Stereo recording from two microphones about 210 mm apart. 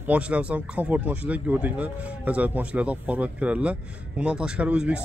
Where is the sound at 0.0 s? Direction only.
5° right (ahead or behind).